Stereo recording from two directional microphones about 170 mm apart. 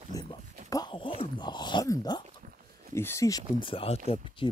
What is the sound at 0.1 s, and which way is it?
Dog, 20° left (ahead or behind).